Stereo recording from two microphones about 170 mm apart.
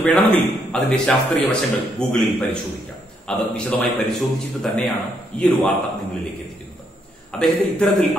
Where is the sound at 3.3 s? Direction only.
5° left (ahead or behind).